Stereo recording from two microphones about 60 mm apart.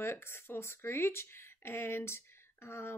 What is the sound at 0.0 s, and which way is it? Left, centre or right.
Speech, left.